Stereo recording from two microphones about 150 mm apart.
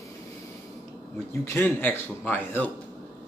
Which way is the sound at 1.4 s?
15° left (ahead or behind).